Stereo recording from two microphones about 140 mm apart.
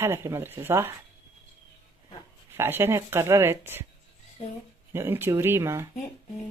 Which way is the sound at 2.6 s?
15° right (ahead or behind).